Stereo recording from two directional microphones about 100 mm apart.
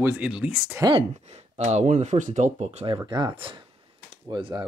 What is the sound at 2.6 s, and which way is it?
Speech, 90° right.